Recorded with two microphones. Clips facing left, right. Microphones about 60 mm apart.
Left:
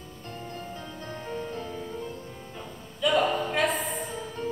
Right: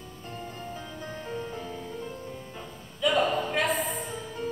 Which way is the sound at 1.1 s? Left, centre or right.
Centre.